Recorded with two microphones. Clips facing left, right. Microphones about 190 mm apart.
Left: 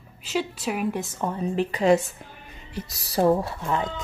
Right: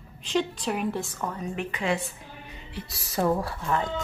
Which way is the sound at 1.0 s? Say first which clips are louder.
Left 5 dB; 25° left (ahead or behind).